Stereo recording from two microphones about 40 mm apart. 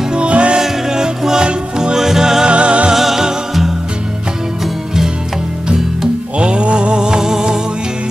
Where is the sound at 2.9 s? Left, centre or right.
Centre.